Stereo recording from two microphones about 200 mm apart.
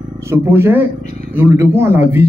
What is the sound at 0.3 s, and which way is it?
Speech, 10° right (ahead or behind).